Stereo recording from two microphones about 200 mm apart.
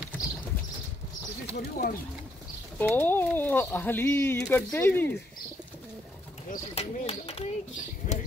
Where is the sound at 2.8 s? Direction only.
10° left (ahead or behind).